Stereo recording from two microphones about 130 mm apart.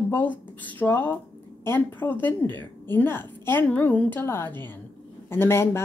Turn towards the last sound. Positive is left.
turn(degrees=20)  # may be behind; listen again after turning